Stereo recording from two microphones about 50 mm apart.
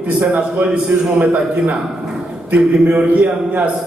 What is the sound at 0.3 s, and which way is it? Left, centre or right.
A man's voice, right.